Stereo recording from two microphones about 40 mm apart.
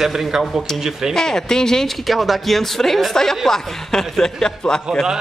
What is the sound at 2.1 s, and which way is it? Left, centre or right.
Speech, centre.